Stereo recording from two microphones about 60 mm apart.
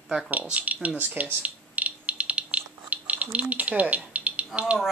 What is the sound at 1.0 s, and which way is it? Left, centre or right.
Mechanisms, right.